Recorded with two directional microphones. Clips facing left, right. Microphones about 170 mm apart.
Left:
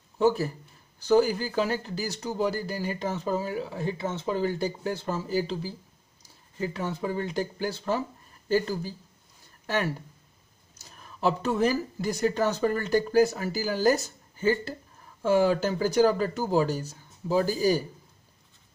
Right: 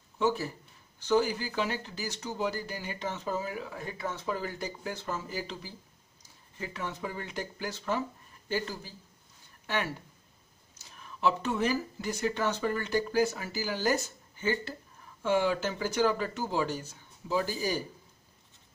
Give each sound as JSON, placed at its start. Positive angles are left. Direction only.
{"t": 0.2, "sound": "speech", "side_deg": 40}
{"t": 10.8, "sound": "speech", "side_deg": 40}